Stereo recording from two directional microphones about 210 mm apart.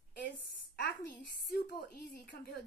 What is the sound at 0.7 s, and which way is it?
A woman's voice, 50° left (ahead or behind).